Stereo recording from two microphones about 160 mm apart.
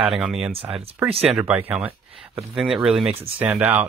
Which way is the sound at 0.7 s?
35° right (ahead or behind).